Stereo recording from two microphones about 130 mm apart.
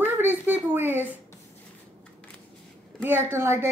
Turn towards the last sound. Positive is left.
turn(degrees=-20)  # may be behind; listen again after turning